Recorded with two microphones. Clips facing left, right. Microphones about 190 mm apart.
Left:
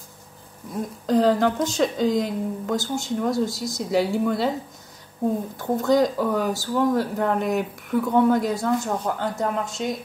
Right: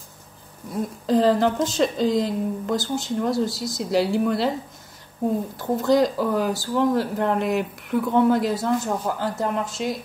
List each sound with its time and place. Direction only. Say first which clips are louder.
1.0 s speech: even; centre (ahead or behind)
5.6 s speech: even; centre (ahead or behind)